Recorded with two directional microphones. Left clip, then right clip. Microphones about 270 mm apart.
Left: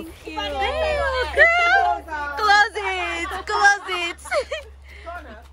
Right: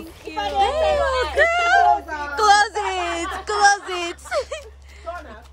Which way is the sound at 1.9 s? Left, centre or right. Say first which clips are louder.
Right 4 dB; right.